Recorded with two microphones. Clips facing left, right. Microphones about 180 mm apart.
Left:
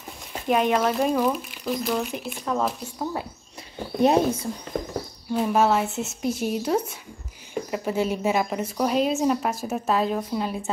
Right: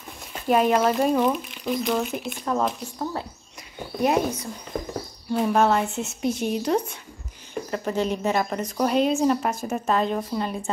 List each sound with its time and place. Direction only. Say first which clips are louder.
0.5 s a woman's voice: right 2 dB; centre (ahead or behind)
4.0 s speech: left 3 dB; 30° left (ahead or behind)
5.3 s a woman's voice: right 1 dB; 5° left (ahead or behind)